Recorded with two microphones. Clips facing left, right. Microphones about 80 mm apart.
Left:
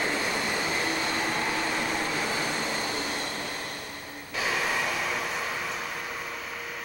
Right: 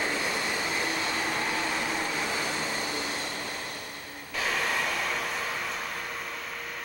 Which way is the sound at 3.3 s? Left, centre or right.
Centre.